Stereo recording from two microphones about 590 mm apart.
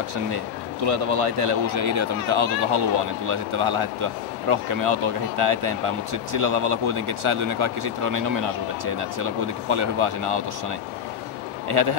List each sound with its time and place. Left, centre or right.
0.8 s speech: right
11.7 s speech: right